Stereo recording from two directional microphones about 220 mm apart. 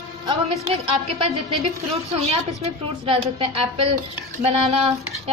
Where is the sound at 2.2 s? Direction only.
30° right (ahead or behind).